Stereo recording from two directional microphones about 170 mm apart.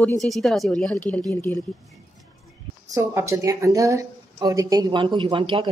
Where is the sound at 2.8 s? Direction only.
20° right (ahead or behind).